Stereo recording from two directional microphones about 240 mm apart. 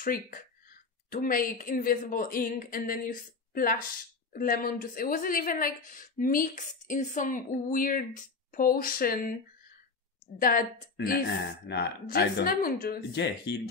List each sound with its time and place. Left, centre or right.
0.0 s a woman's voice: left
10.4 s a woman's voice: left